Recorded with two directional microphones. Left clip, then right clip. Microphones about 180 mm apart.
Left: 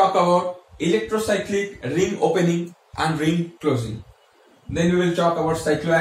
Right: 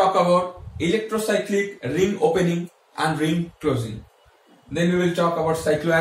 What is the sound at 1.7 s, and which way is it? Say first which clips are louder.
Speech: even; 15° left (ahead or behind).